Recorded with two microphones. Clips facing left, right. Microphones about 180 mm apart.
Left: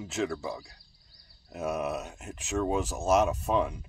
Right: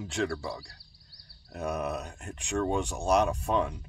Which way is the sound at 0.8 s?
75° right (ahead or behind).